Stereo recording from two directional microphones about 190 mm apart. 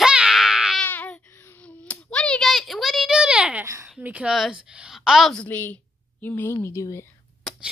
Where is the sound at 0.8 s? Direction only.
10° left (ahead or behind).